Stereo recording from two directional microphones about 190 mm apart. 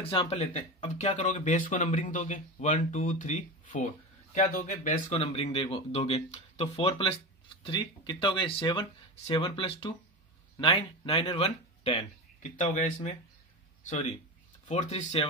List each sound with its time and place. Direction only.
0.0 s speech: 30° left (ahead or behind)